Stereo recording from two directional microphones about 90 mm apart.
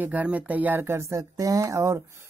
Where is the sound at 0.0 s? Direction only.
15° right (ahead or behind).